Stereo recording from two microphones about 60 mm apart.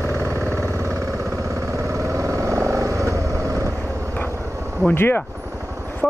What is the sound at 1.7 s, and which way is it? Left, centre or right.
Vehicle, right.